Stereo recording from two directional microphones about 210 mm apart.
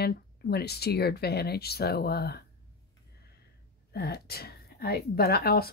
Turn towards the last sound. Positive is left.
turn(degrees=45)  # may be behind; listen again after turning